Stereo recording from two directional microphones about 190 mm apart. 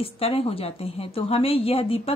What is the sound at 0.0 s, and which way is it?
Speech, 30° left (ahead or behind).